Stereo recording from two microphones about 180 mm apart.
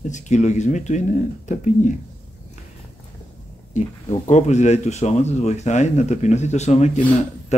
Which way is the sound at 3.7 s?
40° left (ahead or behind).